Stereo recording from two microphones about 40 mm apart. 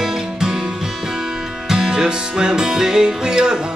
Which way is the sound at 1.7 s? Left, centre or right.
Centre.